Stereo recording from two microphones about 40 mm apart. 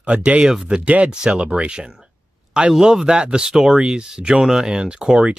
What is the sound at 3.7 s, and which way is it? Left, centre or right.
Speech, right.